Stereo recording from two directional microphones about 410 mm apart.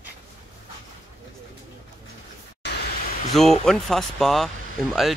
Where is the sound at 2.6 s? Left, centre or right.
Left.